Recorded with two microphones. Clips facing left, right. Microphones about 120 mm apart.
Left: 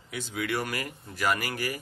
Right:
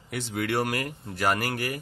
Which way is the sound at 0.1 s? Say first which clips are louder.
Right 3 dB; 65° right (ahead or behind).